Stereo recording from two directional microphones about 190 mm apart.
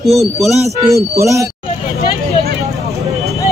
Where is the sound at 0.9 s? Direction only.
15° right (ahead or behind).